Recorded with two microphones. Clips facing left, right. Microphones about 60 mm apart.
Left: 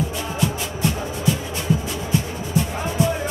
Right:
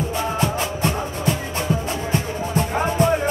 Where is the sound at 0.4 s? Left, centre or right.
Right.